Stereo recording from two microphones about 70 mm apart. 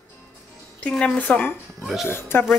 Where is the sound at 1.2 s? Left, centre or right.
Left.